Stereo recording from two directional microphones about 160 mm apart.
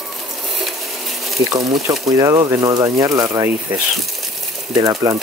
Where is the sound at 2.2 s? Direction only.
20° right (ahead or behind).